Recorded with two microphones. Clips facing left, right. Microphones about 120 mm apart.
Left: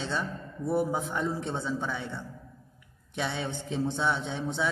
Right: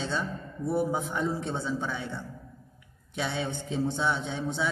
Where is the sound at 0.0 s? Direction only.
Centre (ahead or behind).